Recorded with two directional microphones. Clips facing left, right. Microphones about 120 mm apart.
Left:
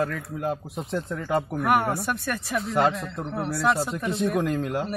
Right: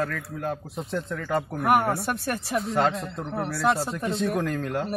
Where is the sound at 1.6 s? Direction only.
30° right (ahead or behind).